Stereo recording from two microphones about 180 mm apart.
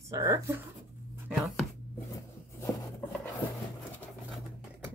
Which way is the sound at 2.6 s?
15° left (ahead or behind).